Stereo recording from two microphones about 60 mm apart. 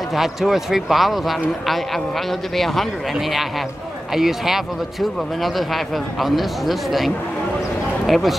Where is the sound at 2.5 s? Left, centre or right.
Centre.